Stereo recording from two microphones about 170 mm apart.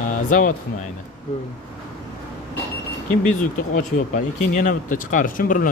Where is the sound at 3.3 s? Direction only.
50° left (ahead or behind).